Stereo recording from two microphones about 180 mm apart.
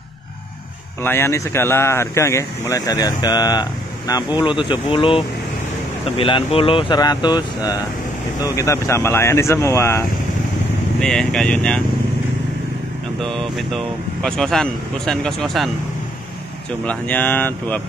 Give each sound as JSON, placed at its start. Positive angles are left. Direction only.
{"t": 1.0, "sound": "speech", "side_deg": 15}
{"t": 11.0, "sound": "speech", "side_deg": 5}
{"t": 13.2, "sound": "speech", "side_deg": 0}
{"t": 16.8, "sound": "speech", "side_deg": 10}